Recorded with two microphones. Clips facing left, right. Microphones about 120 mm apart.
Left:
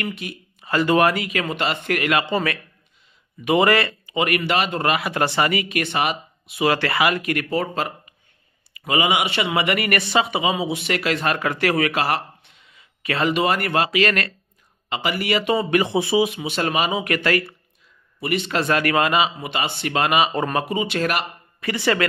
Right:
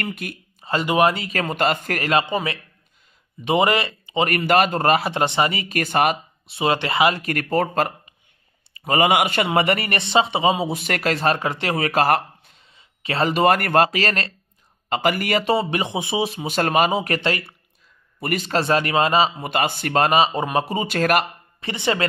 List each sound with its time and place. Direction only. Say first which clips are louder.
0.0 s speech: even; 50° right (ahead or behind)
0.6 s a sound: left 2 dB; 30° right (ahead or behind)
0.8 s speech: even; 15° right (ahead or behind)
1.1 s speech: even; 35° right (ahead or behind)
2.2 s speech: left 2 dB; 20° right (ahead or behind)
5.2 s speech: even; 20° right (ahead or behind); by 6.1 s 45° right (ahead or behind)
6.4 s speech: left 1 dB; 30° right (ahead or behind)
11.9 s speech: right 4 dB; 40° right (ahead or behind)
14.9 s speech: right 2 dB; 45° right (ahead or behind)
15.4 s speech: left 1 dB; 30° right (ahead or behind)
16.3 s speech: right 2 dB; 35° right (ahead or behind)
17.0 s speech: left 2 dB; 30° right (ahead or behind)
18.2 s speech: even; 40° right (ahead or behind)
21.5 s speech: left 2 dB; 25° right (ahead or behind)